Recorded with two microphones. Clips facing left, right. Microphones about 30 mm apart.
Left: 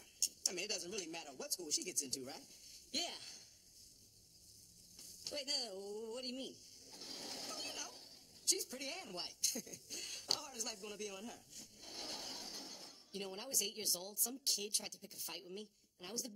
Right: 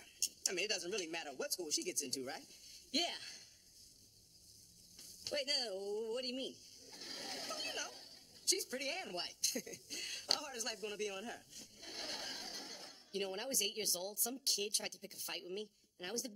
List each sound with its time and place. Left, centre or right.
0.0 s speech: right
4.9 s speech: right
6.9 s a sound: right
9.4 s speech: right